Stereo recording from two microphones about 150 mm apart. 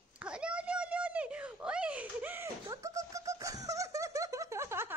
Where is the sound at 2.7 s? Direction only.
20° right (ahead or behind).